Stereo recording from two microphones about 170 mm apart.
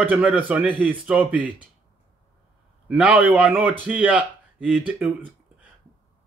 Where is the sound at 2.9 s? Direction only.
10° right (ahead or behind).